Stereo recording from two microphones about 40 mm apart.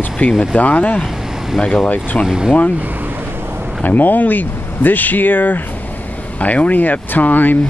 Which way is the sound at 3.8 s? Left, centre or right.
Left.